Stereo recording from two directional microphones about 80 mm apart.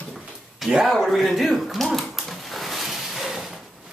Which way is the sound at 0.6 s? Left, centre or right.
Centre.